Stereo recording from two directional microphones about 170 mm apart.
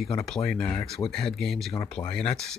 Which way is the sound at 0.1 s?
5° left (ahead or behind).